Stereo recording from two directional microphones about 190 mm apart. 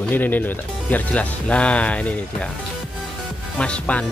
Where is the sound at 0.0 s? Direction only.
10° left (ahead or behind).